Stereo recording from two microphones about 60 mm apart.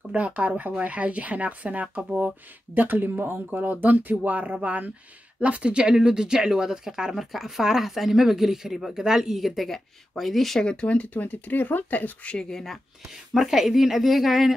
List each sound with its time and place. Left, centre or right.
0.1 s speech: right; by 10.7 s centre
10.7 s speech: centre
12.4 s speech: centre
13.0 s speech: centre